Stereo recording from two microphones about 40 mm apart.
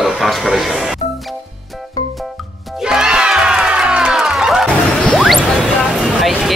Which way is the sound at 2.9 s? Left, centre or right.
Centre.